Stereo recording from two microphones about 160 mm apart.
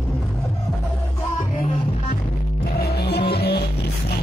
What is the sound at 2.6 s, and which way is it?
Music, 80° left.